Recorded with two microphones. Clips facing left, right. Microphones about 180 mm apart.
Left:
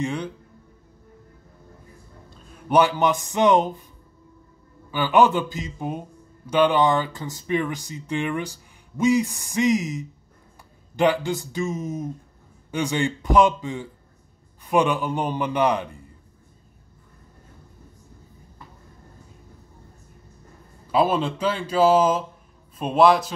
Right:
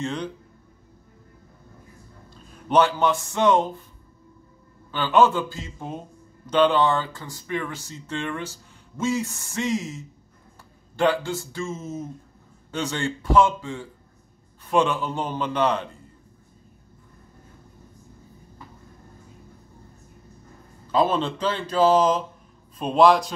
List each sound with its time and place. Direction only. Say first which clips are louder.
0.0 s a man's voice: left 2 dB; 10° left (ahead or behind)
2.7 s a man's voice: left 1 dB; 15° left (ahead or behind)
4.9 s a man's voice: left 1 dB; 15° left (ahead or behind)
20.9 s a man's voice: left 1 dB; 10° left (ahead or behind)